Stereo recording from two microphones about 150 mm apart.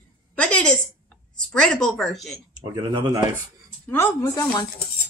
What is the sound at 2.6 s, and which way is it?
Speech, 30° right (ahead or behind).